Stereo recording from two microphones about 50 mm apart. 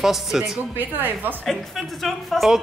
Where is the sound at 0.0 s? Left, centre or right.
Centre.